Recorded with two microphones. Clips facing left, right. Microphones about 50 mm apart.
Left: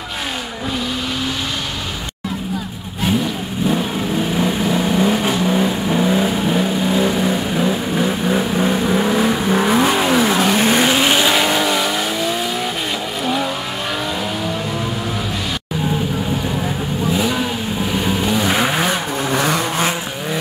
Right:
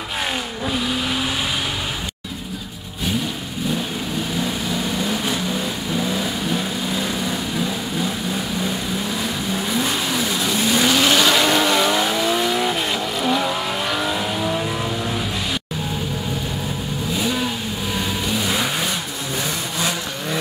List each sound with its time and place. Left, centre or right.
4.6 s vehicle: left
10.9 s vehicle: left
11.5 s vehicle: centre
18.2 s vehicle: left
19.3 s vehicle: left